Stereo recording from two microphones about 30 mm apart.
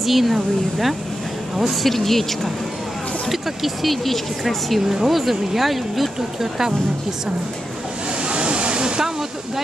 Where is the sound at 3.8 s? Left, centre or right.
Centre.